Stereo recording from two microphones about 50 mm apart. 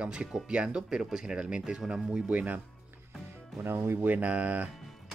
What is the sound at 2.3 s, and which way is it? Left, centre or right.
Speech, right.